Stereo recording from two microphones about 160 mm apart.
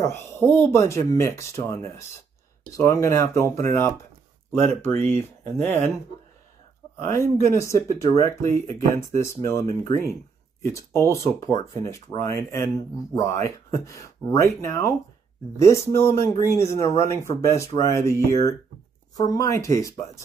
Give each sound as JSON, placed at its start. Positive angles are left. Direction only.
{"t": 0.0, "sound": "speech", "side_deg": 15}
{"t": 7.1, "sound": "speech", "side_deg": 15}